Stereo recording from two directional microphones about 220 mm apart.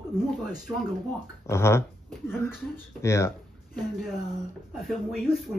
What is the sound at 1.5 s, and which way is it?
Speech, 10° left (ahead or behind).